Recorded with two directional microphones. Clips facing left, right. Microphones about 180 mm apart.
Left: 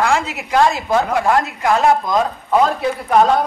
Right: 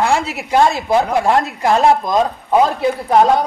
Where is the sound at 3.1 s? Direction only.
20° right (ahead or behind).